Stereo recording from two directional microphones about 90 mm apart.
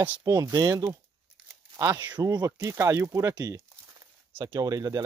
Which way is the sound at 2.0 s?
55° right (ahead or behind).